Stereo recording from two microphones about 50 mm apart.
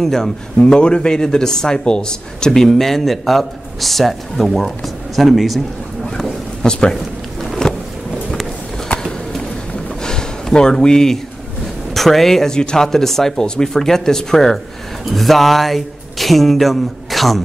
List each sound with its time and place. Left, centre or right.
0.0 s speech: centre
6.6 s speech: centre
7.4 s thunder: centre
8.8 s skateboard: centre
10.0 s a sound: centre
11.9 s speech: centre